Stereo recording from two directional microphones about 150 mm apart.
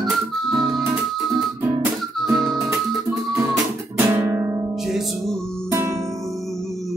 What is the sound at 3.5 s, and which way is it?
Guitar, 15° right (ahead or behind).